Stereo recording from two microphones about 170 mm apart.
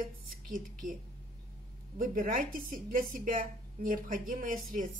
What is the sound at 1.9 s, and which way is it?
Speech, 55° right (ahead or behind).